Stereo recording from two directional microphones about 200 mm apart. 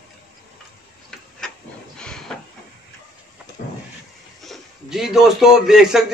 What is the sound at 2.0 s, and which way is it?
Train, 5° left (ahead or behind).